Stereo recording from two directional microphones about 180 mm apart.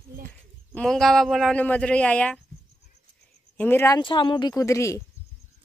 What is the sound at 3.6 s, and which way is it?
Speech, 10° left (ahead or behind).